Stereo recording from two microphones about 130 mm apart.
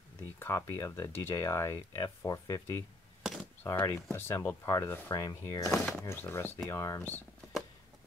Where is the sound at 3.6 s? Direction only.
15° left (ahead or behind).